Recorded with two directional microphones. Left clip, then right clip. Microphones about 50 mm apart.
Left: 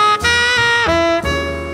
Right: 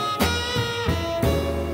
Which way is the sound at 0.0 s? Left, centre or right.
Left.